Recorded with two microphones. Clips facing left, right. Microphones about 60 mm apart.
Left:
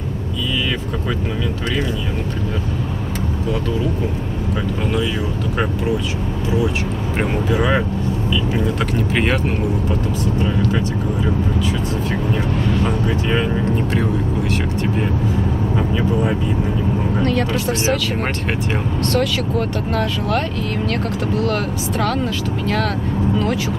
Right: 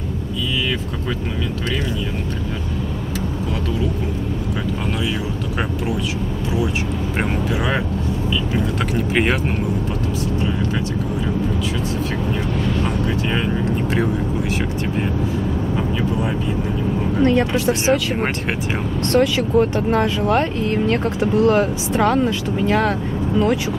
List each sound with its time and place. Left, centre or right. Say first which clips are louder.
7.2 s speech: left 4 dB; centre
9.1 s speech: right 1 dB; centre
12.8 s vehicle: left 2 dB; centre
17.2 s speech: right 5 dB; right
17.6 s speech: right 2 dB; centre
19.1 s speech: right 6 dB; right